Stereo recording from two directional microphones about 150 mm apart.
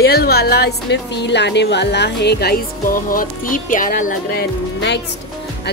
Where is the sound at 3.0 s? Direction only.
65° left (ahead or behind).